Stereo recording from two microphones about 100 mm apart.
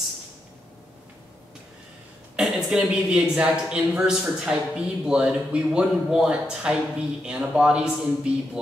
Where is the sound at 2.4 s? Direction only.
5° right (ahead or behind).